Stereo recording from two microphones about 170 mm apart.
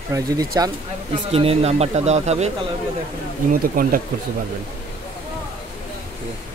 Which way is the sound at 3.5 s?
55° right (ahead or behind).